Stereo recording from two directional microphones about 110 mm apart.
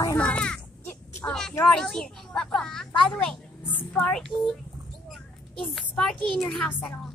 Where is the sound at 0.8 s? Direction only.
20° left (ahead or behind).